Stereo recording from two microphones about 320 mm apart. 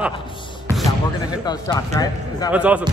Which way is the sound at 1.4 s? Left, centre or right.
Centre.